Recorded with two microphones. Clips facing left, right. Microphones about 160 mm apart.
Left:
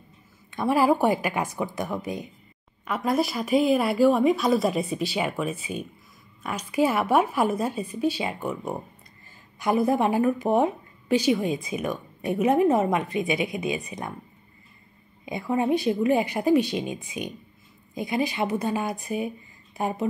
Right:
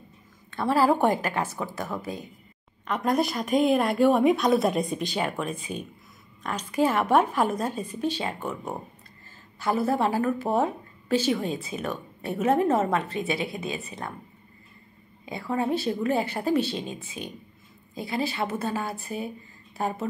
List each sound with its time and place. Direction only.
0.5 s a woman's voice: 15° left (ahead or behind)
2.9 s a woman's voice: 5° left (ahead or behind)
15.2 s a woman's voice: 15° left (ahead or behind)